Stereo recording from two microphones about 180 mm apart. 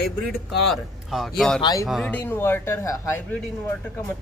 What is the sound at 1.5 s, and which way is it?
Speech, 20° left (ahead or behind).